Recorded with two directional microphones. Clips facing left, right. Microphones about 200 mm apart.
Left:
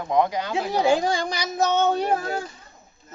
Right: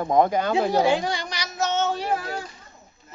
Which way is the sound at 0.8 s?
45° left (ahead or behind).